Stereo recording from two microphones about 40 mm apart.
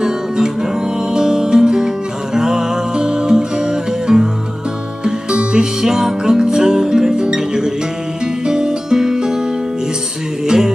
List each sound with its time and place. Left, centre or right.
1.1 s music: centre
5.4 s music: right
10.4 s music: centre